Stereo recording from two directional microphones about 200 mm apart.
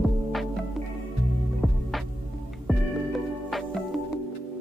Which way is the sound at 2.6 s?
Centre (ahead or behind).